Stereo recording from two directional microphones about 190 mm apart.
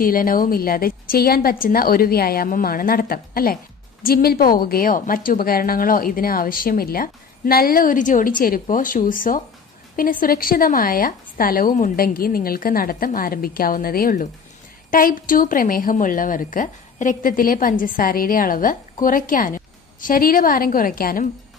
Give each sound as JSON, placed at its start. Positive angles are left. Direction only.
{"t": 0.0, "sound": "a woman's voice", "side_deg": 50}